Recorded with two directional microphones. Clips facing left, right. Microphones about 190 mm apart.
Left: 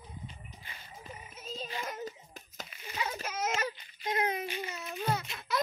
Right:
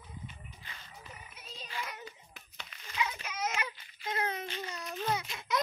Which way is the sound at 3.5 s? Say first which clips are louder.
Left 3 dB; 35° left (ahead or behind).